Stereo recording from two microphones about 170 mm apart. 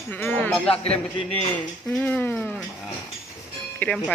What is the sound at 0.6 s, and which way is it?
Speech, 35° left (ahead or behind).